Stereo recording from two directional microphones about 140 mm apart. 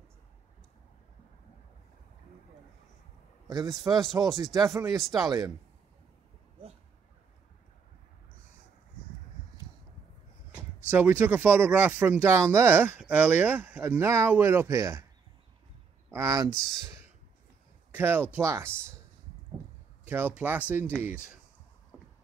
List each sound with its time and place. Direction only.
3.4 s a man's voice: 25° right (ahead or behind)
10.9 s speech: 15° right (ahead or behind)
16.1 s speech: 20° right (ahead or behind)
20.1 s speech: 15° right (ahead or behind)